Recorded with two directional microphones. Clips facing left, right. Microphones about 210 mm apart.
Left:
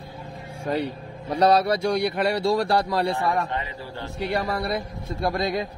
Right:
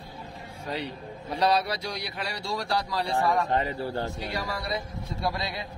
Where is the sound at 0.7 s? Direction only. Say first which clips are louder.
Left 7 dB; 50° left (ahead or behind).